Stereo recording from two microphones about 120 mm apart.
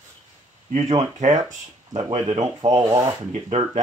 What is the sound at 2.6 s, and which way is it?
Speech, 35° right (ahead or behind).